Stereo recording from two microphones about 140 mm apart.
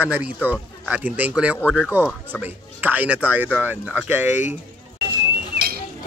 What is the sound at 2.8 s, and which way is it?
Speech, 10° right (ahead or behind).